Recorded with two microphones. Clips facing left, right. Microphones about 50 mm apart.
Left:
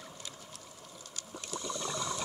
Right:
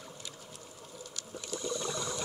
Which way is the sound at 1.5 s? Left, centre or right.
Centre.